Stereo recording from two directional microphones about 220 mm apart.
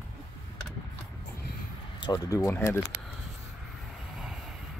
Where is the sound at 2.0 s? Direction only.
15° left (ahead or behind).